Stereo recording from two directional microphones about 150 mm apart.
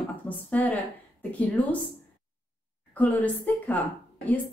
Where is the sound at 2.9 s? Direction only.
10° left (ahead or behind).